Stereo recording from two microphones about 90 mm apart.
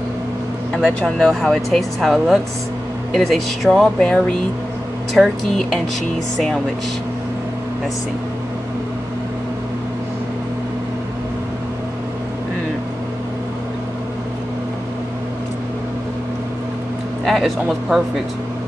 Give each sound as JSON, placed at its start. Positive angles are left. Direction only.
{"t": 1.0, "sound": "speech", "side_deg": 0}
{"t": 17.2, "sound": "speech", "side_deg": 0}